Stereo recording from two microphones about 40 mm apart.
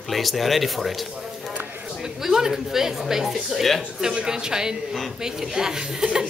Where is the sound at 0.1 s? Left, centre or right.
Centre.